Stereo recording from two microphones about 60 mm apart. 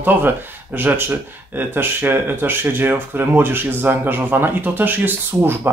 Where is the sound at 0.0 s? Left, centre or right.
Right.